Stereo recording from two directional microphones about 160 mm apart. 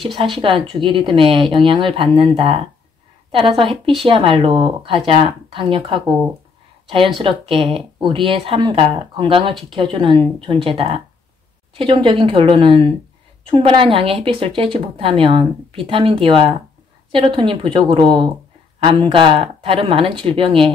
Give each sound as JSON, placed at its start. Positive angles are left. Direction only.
{"t": 0.1, "sound": "a woman's voice", "side_deg": -30}
{"t": 7.2, "sound": "a woman's voice", "side_deg": -35}